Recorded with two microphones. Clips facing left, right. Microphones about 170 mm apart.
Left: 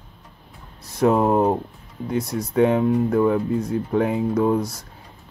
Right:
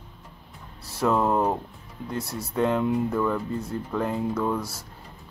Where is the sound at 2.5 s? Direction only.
65° left (ahead or behind).